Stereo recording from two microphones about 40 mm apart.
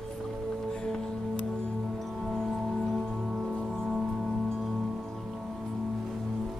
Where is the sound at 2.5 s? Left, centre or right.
Centre.